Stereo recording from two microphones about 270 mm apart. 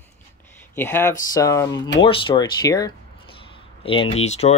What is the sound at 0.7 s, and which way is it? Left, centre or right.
Speech, centre.